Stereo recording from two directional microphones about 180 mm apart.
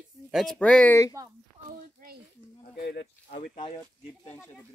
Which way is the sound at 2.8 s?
70° left (ahead or behind).